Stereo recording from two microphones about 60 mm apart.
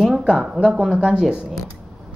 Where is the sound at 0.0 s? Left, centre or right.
Centre.